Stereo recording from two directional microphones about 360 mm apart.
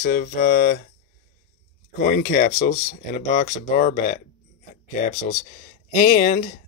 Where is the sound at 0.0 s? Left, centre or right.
Left.